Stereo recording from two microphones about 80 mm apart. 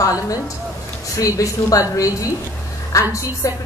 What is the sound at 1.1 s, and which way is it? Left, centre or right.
A woman's voice, left.